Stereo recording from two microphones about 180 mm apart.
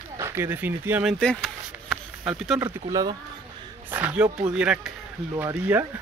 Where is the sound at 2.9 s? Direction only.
20° right (ahead or behind).